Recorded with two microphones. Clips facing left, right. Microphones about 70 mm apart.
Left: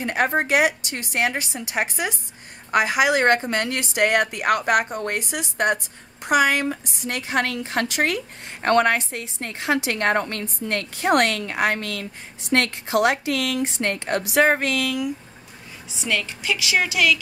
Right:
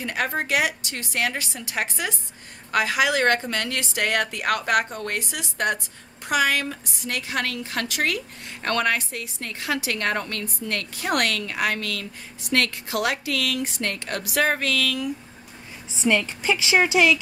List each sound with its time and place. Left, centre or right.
0.0 s a woman's voice: left
15.9 s a woman's voice: right